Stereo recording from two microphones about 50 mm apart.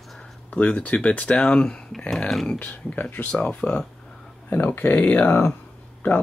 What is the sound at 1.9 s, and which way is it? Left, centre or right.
Speech, centre.